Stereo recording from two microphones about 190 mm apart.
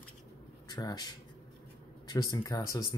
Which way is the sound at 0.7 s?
20° left (ahead or behind).